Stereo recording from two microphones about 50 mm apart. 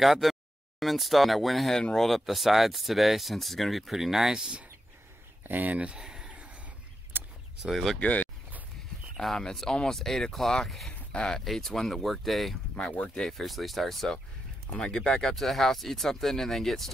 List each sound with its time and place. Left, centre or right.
0.0 s speech: centre
5.5 s speech: right; by 6.3 s centre
7.1 s a sound: right
7.6 s speech: centre
8.0 s speech: left
9.1 s speech: centre
11.1 s speech: centre
11.4 s speech: centre
12.9 s speech: left
13.3 s speech: centre
14.7 s speech: centre
15.1 s speech: centre